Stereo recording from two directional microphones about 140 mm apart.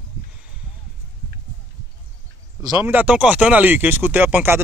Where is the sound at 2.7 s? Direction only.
10° right (ahead or behind).